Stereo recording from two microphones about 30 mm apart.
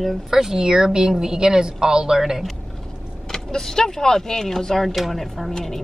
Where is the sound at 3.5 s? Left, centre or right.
Centre.